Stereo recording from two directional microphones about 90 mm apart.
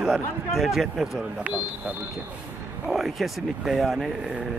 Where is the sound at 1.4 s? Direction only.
15° right (ahead or behind).